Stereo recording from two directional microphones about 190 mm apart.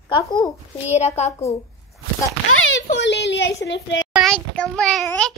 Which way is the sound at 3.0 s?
65° left (ahead or behind).